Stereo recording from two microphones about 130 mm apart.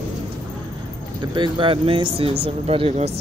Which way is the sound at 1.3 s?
40° right (ahead or behind).